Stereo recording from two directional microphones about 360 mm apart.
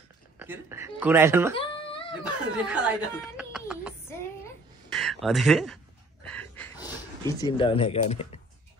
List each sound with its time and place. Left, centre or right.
0.4 s speech: centre
1.5 s a sound: centre
2.2 s snicker: centre
4.9 s speech: centre
6.2 s a sound: centre
7.4 s speech: centre